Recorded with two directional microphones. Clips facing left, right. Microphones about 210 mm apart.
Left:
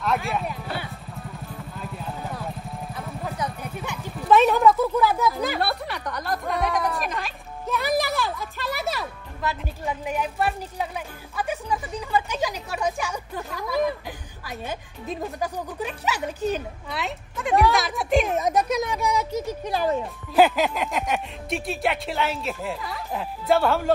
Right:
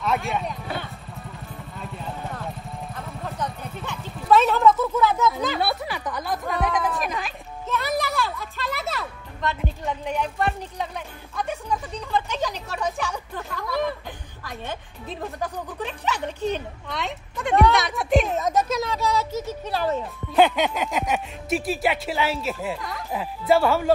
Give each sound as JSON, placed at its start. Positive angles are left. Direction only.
{"t": 0.0, "sound": "clip-clop", "side_deg": 0}
{"t": 1.8, "sound": "vehicle", "side_deg": 5}
{"t": 3.2, "sound": "a sound", "side_deg": 5}
{"t": 5.3, "sound": "speech", "side_deg": 0}
{"t": 8.8, "sound": "speech", "side_deg": 15}
{"t": 9.4, "sound": "speech", "side_deg": 5}
{"t": 15.1, "sound": "speech", "side_deg": 10}
{"t": 18.3, "sound": "speech", "side_deg": 15}